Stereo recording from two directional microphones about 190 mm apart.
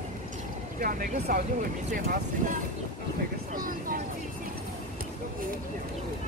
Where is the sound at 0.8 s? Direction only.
50° right (ahead or behind).